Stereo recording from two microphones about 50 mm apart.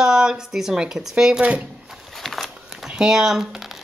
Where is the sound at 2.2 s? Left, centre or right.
Centre.